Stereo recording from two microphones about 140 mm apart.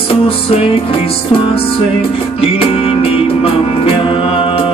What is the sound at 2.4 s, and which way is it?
Music, 45° left (ahead or behind).